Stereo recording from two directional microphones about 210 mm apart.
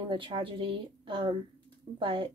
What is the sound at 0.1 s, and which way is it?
A woman's voice, 25° right (ahead or behind).